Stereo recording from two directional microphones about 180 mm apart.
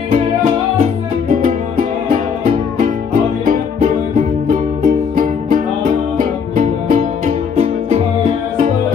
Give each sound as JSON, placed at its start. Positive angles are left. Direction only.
{"t": 0.1, "sound": "music", "side_deg": -40}
{"t": 3.4, "sound": "music", "side_deg": -45}